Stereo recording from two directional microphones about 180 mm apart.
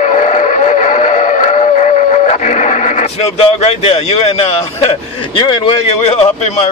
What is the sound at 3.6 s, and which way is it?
Speech, 35° left (ahead or behind).